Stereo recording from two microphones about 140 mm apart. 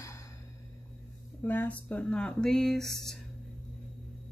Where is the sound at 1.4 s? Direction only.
10° left (ahead or behind).